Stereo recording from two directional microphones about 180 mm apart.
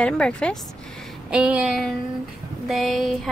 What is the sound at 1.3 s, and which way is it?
A woman's voice, 5° right (ahead or behind).